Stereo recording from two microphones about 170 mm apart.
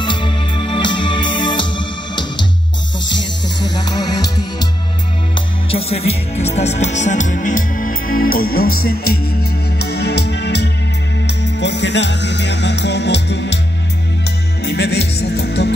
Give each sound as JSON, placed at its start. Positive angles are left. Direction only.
{"t": 0.0, "sound": "music", "side_deg": 30}
{"t": 3.6, "sound": "music", "side_deg": 25}
{"t": 5.7, "sound": "music", "side_deg": 35}
{"t": 9.8, "sound": "music", "side_deg": 75}
{"t": 14.6, "sound": "music", "side_deg": 80}